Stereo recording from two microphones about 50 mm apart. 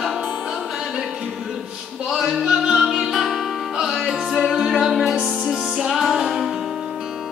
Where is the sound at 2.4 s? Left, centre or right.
Centre.